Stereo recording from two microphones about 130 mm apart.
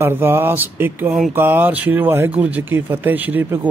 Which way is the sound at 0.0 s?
15° right (ahead or behind).